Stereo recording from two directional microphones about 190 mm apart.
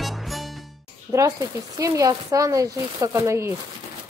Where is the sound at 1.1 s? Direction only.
15° right (ahead or behind).